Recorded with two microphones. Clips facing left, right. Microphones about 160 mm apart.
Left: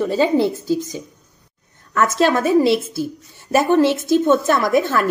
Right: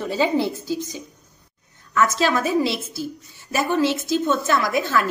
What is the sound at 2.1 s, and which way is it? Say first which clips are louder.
A woman's voice: left 5 dB; 55° left (ahead or behind).